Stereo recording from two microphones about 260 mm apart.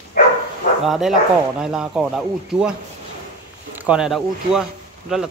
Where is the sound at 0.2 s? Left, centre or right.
Left.